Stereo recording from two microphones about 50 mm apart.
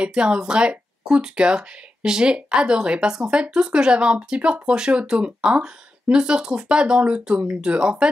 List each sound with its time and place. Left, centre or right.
0.0 s speech: centre